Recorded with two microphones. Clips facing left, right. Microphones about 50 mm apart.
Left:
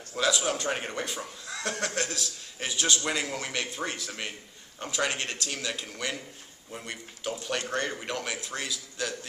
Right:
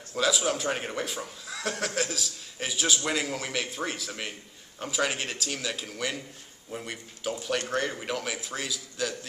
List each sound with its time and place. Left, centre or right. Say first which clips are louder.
0.1 s speech: right 1 dB; centre